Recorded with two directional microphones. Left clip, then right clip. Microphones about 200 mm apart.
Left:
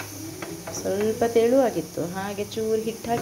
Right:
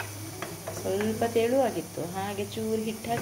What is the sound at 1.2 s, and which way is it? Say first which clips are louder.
Speech: left 6 dB; 20° left (ahead or behind).